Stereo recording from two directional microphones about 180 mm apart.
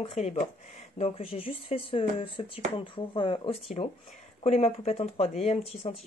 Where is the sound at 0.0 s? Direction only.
35° left (ahead or behind).